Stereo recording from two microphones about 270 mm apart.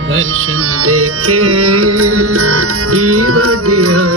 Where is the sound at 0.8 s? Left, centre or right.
Right.